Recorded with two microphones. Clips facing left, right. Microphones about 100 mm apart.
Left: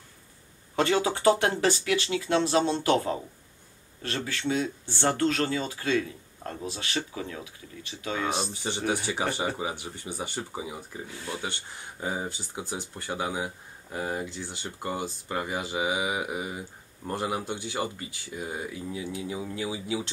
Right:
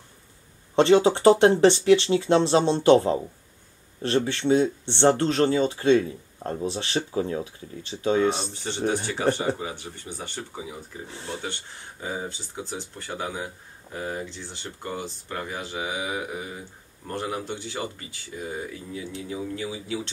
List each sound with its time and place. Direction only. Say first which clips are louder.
0.7 s speech: right 7 dB; 25° right (ahead or behind)
8.6 s speech: right 4 dB; 10° left (ahead or behind)
11.1 s speech: right 2 dB; 30° right (ahead or behind)
12.0 s speech: even; 10° left (ahead or behind)